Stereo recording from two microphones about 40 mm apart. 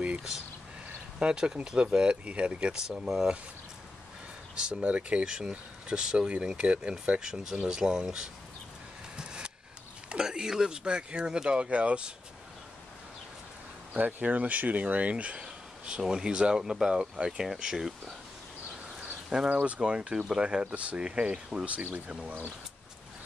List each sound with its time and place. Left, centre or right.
1.2 s speech: centre
2.7 s speech: centre
4.6 s speech: right
4.8 s speech: right
5.2 s speech: centre
9.1 s vehicle: right
10.0 s speech: centre
13.9 s speech: right
15.4 s speech: right
19.2 s speech: centre
19.6 s speech: right